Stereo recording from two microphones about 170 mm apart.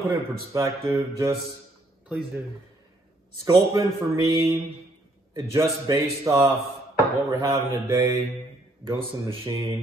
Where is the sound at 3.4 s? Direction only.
20° right (ahead or behind).